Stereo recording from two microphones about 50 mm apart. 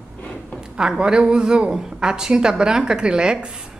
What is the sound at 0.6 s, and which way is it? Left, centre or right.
Speech, centre.